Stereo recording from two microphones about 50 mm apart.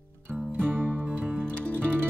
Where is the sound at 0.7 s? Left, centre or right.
Right.